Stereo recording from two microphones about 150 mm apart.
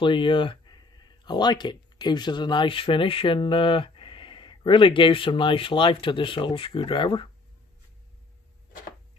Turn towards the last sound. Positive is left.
turn(degrees=35)  # may be behind; listen again after turning